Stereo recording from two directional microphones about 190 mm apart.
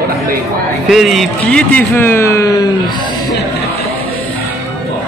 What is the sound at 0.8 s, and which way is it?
A man's voice, centre (ahead or behind).